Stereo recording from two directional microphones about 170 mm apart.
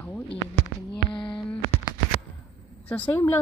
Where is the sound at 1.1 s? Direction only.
30° left (ahead or behind).